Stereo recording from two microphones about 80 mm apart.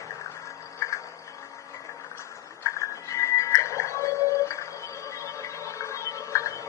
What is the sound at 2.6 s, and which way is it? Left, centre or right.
Music, left.